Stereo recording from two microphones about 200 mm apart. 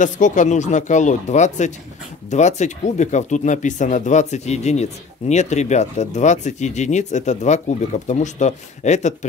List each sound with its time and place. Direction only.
0.0 s speech: 40° left (ahead or behind)